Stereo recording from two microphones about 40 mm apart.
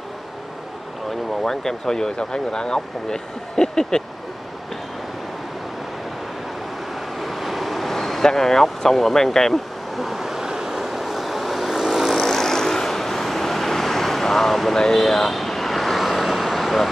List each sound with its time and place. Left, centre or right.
1.4 s speech: centre
7.2 s vehicle: centre
8.6 s speech: centre
9.9 s vehicle: centre
12.3 s vehicle: centre